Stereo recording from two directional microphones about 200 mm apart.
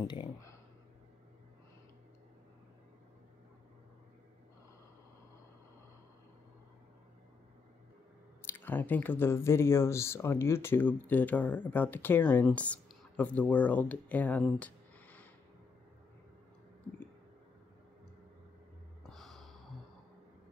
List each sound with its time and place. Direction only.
0.0 s a sound: 20° left (ahead or behind)
8.4 s speech: 10° left (ahead or behind)
19.0 s gasp: centre (ahead or behind)